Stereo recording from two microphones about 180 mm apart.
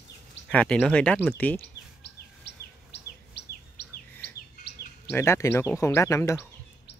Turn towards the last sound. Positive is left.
turn(degrees=15)  # may be behind; listen again after turning